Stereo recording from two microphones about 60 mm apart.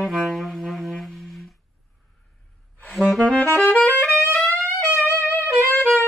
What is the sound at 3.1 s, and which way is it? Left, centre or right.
Saxophone, centre.